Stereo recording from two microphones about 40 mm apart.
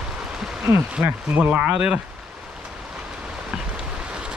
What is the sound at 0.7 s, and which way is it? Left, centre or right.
Speech, right.